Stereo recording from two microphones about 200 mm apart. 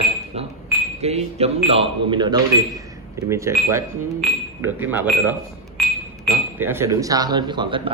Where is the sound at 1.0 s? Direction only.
30° right (ahead or behind); by 3.5 s 15° right (ahead or behind).